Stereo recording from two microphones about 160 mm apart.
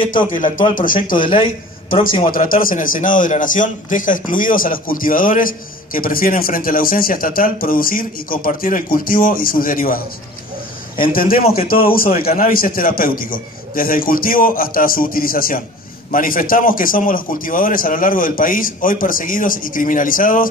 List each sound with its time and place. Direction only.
0.3 s a man's voice: 55° left (ahead or behind)
1.3 s a man's voice: 35° left (ahead or behind)
2.3 s a man's voice: 60° left (ahead or behind)
11.0 s a man's voice: 65° left (ahead or behind)